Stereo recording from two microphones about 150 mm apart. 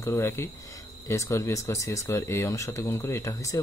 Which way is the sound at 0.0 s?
15° left (ahead or behind).